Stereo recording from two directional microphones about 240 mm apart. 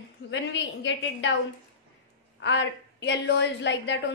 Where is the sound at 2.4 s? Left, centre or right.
Left.